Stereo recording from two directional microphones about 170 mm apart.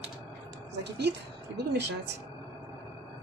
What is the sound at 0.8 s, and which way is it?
A woman's voice, 80° right.